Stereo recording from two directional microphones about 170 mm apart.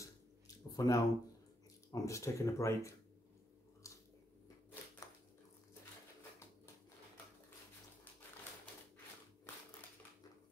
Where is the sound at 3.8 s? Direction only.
20° left (ahead or behind).